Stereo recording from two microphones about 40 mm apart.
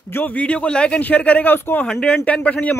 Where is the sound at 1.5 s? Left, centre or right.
Left.